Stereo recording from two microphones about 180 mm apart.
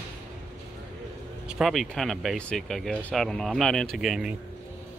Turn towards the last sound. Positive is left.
turn(degrees=0)  # may be behind; listen again after turning